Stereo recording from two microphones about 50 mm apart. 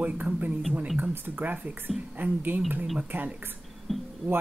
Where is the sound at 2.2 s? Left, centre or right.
Right.